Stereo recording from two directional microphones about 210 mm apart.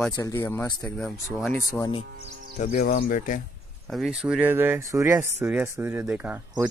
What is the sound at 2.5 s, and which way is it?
Speech, 40° left (ahead or behind).